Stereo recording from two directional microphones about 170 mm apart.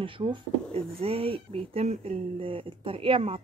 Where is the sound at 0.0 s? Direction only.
30° right (ahead or behind).